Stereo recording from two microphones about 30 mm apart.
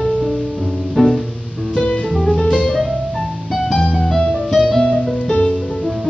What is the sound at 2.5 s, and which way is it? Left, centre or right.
Music, centre.